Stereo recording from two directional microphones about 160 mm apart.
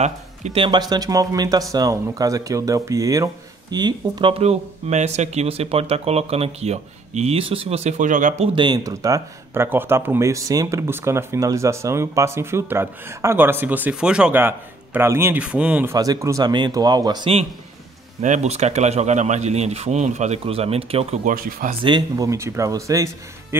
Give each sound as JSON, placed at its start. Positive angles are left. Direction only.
{"t": 0.0, "sound": "speech", "side_deg": -40}
{"t": 8.5, "sound": "speech", "side_deg": -25}
{"t": 15.9, "sound": "speech", "side_deg": -20}
{"t": 18.2, "sound": "speech", "side_deg": -45}
{"t": 21.3, "sound": "speech", "side_deg": -60}
{"t": 21.6, "sound": "speech", "side_deg": -30}